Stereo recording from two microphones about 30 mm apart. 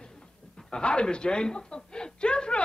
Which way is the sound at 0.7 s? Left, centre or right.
Left.